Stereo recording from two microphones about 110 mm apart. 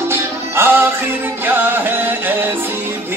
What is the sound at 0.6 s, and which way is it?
Music, 20° right (ahead or behind).